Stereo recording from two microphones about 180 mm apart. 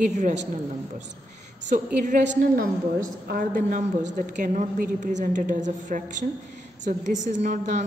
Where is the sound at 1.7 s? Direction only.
45° right (ahead or behind).